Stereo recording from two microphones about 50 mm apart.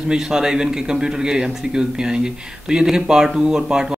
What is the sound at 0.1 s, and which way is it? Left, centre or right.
A man's voice, centre.